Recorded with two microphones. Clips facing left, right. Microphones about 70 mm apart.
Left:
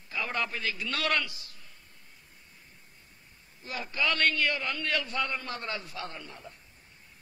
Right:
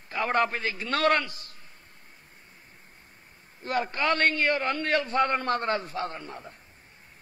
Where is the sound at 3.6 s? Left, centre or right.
Right.